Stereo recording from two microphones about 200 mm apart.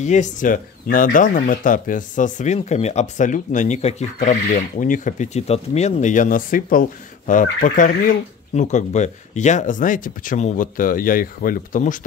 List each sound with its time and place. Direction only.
0.0 s speech: 35° left (ahead or behind)